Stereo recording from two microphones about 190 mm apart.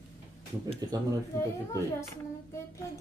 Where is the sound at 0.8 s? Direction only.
20° right (ahead or behind).